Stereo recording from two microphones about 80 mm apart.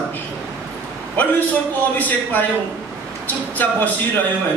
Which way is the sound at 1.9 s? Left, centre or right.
Left.